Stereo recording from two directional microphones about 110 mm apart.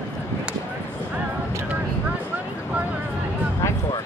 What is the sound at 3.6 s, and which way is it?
Music, 25° left (ahead or behind).